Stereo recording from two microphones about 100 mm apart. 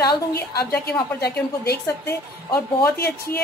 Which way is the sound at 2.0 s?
25° left (ahead or behind).